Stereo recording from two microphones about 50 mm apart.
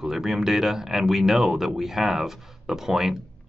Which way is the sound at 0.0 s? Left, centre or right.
Centre.